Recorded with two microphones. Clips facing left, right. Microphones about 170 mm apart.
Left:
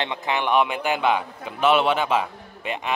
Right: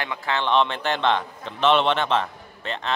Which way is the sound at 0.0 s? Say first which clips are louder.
Left 1 dB; 20° left (ahead or behind).